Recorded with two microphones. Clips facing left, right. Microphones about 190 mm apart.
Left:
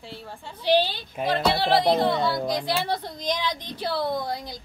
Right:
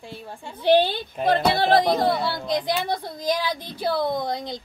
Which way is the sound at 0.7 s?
55° right (ahead or behind).